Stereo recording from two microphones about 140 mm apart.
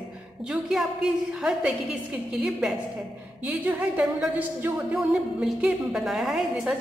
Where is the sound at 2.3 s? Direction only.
5° right (ahead or behind).